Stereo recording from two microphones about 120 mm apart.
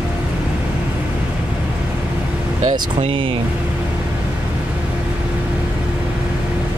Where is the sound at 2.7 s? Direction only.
45° right (ahead or behind).